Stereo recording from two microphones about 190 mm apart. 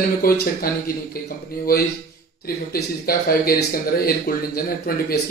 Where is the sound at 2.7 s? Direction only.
55° left (ahead or behind).